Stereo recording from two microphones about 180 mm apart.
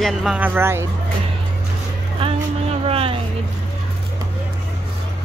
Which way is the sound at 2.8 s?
30° right (ahead or behind).